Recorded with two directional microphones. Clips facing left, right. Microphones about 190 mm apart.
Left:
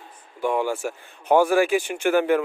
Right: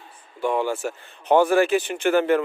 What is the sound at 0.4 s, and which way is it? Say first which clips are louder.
Speech: even; 10° left (ahead or behind).